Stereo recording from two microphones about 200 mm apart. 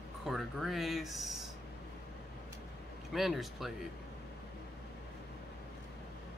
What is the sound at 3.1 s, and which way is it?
Speech, centre (ahead or behind).